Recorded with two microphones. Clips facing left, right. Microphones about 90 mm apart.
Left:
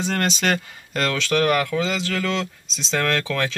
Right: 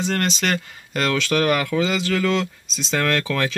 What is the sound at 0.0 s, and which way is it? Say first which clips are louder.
Speech: right 1 dB; 10° left (ahead or behind).